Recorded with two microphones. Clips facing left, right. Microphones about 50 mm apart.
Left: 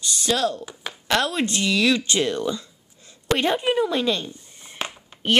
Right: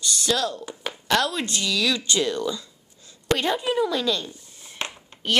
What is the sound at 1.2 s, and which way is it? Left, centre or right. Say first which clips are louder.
Speech: left 5 dB; left.